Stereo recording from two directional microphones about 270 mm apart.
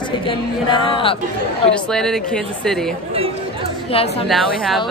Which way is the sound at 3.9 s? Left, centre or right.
Left.